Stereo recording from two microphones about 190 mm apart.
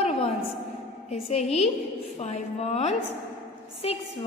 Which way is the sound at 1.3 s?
35° left (ahead or behind).